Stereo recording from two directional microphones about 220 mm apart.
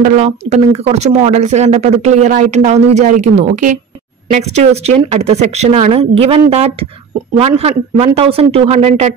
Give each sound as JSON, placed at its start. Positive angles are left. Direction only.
{"t": 0.0, "sound": "speech", "side_deg": -30}